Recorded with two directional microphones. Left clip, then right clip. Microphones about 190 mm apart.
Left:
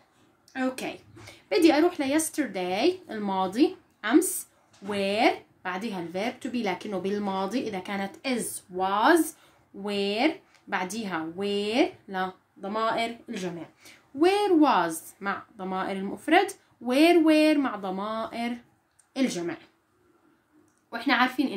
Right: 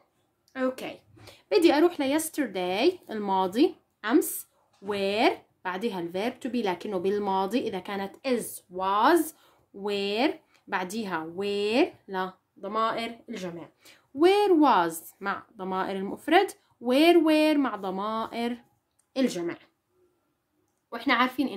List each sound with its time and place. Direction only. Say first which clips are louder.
0.5 s a woman's voice: even; 30° right (ahead or behind)
20.9 s a woman's voice: left 1 dB; 30° right (ahead or behind)